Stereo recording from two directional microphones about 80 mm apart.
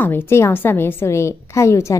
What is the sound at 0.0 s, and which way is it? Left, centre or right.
A woman's voice, left.